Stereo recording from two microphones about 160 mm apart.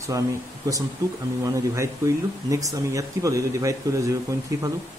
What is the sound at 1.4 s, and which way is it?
Speech, 20° right (ahead or behind).